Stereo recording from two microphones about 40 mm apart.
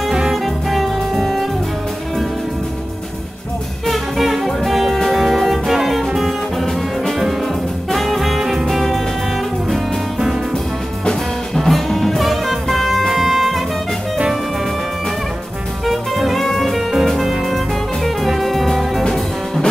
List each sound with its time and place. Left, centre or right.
0.1 s music: centre
0.7 s music: centre
3.8 s music: centre
7.9 s music: centre
8.4 s music: centre
8.7 s music: centre
11.5 s music: centre
13.1 s jazz: centre
15.8 s jazz: centre
17.0 s music: centre